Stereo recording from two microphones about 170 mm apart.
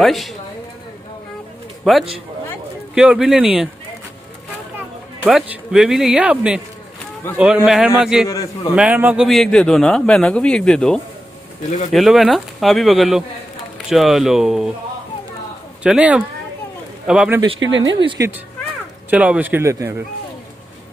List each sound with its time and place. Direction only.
0.0 s a man's voice: centre (ahead or behind)
1.8 s a man's voice: centre (ahead or behind)
5.2 s a man's voice: 5° right (ahead or behind)
8.3 s a man's voice: 20° left (ahead or behind)
8.7 s a man's voice: 10° right (ahead or behind)
15.8 s a man's voice: 5° right (ahead or behind)
17.6 s speech: 90° right
18.2 s speech: 20° right (ahead or behind)
19.0 s a man's voice: 5° right (ahead or behind)